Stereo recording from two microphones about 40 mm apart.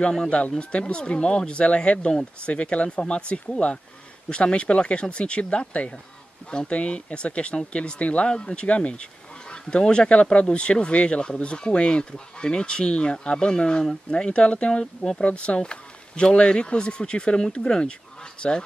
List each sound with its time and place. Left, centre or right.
0.6 s speech: left